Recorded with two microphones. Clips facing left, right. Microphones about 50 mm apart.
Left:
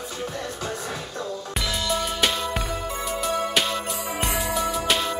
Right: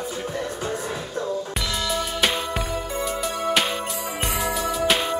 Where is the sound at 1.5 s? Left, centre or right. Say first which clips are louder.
Even; centre.